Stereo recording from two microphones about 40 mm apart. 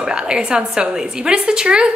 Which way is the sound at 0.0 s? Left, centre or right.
Right.